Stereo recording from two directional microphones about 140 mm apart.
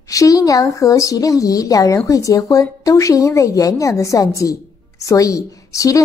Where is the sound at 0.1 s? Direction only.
25° left (ahead or behind).